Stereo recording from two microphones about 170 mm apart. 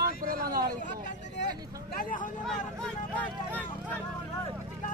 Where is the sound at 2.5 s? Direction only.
5° left (ahead or behind).